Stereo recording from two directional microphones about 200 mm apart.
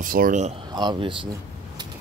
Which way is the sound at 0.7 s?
20° right (ahead or behind).